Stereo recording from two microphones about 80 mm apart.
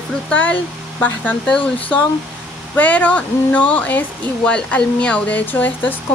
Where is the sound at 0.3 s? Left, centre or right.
Centre.